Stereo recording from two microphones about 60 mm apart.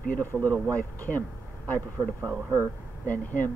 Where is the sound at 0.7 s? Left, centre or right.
Left.